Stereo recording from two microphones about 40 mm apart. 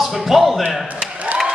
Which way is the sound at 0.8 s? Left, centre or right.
Right.